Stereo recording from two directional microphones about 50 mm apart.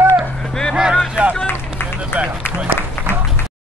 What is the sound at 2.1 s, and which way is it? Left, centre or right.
Run, right.